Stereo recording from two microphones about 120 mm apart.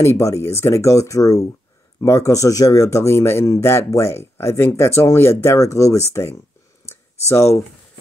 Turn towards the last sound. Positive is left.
turn(degrees=25)  # may be behind; listen again after turning